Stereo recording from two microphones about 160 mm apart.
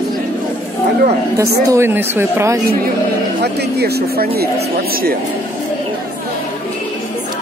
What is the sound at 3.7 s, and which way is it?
Speech, 90° right.